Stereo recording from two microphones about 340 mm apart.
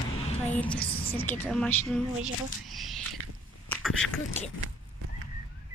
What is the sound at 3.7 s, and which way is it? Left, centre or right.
Speech, centre.